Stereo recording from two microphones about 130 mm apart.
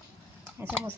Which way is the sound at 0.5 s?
15° right (ahead or behind).